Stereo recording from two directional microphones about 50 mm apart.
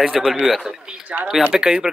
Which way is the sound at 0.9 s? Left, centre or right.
Right.